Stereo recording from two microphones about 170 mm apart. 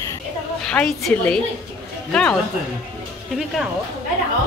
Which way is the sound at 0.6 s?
5° left (ahead or behind).